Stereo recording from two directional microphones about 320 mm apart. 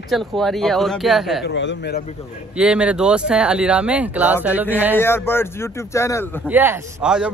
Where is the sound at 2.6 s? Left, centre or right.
Centre.